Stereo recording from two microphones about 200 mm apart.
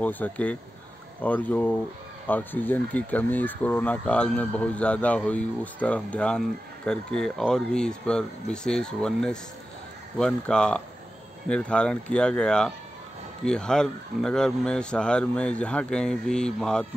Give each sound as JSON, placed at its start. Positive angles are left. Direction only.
{"t": 0.0, "sound": "a man's voice", "side_deg": 10}